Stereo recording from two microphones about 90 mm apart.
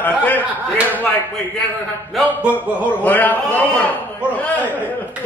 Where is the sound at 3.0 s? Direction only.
20° left (ahead or behind).